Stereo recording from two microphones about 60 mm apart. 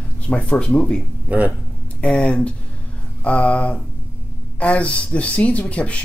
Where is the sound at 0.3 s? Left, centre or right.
Centre.